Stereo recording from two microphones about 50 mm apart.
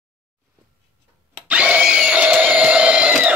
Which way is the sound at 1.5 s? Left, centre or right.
Right.